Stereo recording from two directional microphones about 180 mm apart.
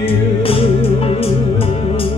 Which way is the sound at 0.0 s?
30° left (ahead or behind).